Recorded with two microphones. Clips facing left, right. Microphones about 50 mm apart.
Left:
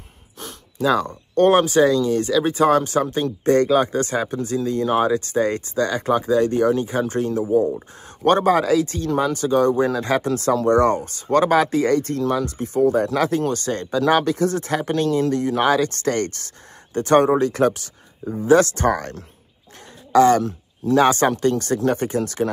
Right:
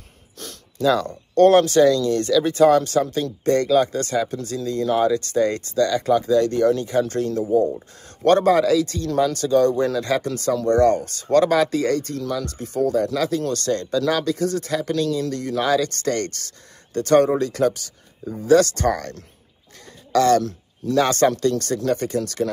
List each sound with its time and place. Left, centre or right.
0.4 s speech: centre; by 10.7 s left
10.7 s speech: left
12.0 s speech: left
13.5 s speech: left